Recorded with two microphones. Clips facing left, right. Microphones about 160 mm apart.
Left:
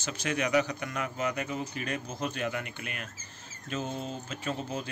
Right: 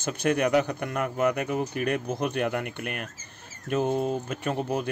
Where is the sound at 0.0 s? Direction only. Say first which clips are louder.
Right 7 dB; 55° right (ahead or behind).